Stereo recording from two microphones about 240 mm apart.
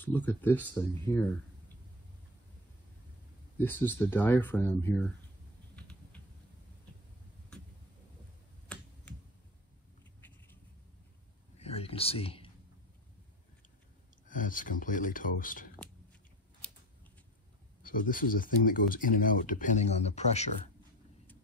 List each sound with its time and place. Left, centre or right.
0.0 s speech: centre
3.5 s speech: centre
5.8 s typing: centre
10.2 s a sound: centre
11.5 s a sound: left
14.2 s speech: left
17.8 s speech: left